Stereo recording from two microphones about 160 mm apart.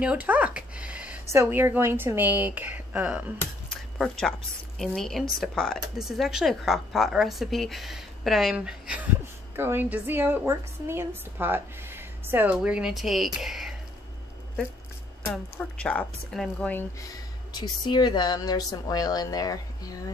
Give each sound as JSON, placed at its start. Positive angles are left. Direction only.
{"t": 0.0, "sound": "a woman's voice", "side_deg": -10}
{"t": 4.0, "sound": "speech", "side_deg": 0}
{"t": 15.8, "sound": "speech", "side_deg": 10}
{"t": 17.6, "sound": "a woman's voice", "side_deg": 25}